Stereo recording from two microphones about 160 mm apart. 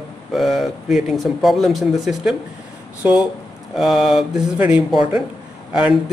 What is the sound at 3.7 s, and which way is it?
Speech, centre (ahead or behind).